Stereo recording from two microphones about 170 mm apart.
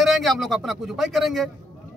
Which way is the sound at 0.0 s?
Centre (ahead or behind).